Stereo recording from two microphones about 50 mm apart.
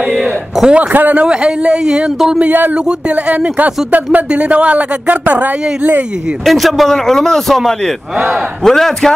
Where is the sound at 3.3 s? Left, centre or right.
Right.